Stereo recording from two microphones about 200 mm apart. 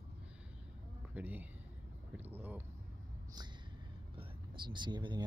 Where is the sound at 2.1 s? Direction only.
10° right (ahead or behind).